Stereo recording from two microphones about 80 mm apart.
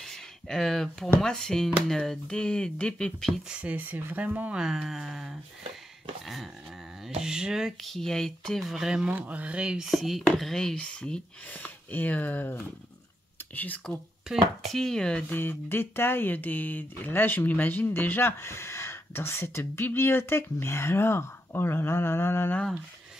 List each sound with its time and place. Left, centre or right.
0.0 s a sound: centre
1.2 s speech: centre
3.4 s speech: centre
4.6 s speech: centre
8.6 s speech: centre
9.8 s speech: centre; by 12.6 s left
13.9 s speech: centre
15.3 s speech: left